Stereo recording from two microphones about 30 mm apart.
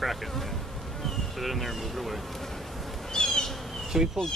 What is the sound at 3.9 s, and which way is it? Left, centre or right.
Speech, centre.